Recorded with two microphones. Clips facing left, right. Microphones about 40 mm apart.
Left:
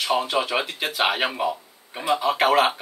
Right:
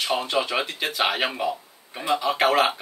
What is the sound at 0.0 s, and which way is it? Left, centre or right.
Speech, centre.